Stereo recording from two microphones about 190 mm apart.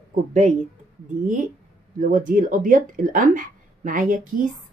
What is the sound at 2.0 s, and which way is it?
A woman's voice, 45° right (ahead or behind).